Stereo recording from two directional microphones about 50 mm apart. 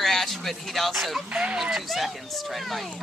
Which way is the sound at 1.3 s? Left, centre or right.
Right.